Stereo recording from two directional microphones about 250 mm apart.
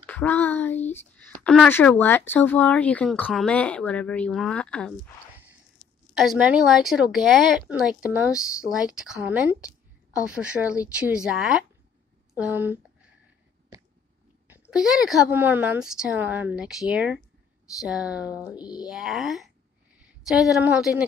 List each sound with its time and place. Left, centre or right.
0.0 s speech: centre
6.1 s speech: centre
14.5 s speech: centre
18.6 s speech: centre
18.9 s a woman's voice: centre